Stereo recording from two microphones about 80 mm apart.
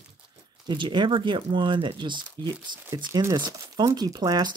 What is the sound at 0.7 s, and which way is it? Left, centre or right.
Speech, right.